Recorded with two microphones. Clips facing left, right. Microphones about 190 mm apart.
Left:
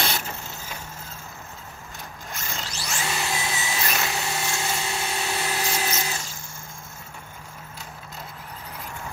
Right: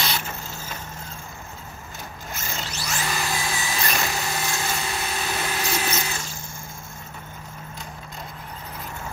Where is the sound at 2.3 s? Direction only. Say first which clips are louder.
Right 2 dB; centre (ahead or behind).